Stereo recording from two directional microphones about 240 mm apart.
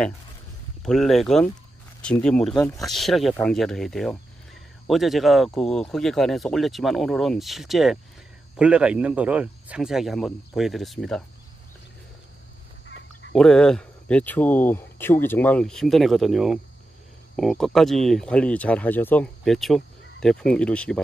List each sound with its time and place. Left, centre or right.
0.8 s speech: centre
2.8 s speech: centre
12.8 s duck: left
13.3 s speech: centre